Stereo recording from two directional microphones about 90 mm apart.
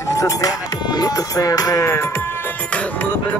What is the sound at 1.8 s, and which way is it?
Speech, 30° left (ahead or behind).